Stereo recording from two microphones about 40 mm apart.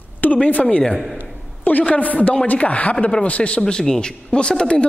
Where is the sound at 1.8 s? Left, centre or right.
Left.